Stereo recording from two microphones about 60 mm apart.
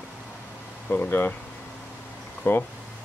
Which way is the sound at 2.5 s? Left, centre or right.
Left.